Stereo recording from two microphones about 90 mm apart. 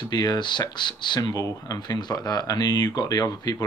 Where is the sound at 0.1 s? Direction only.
50° left (ahead or behind).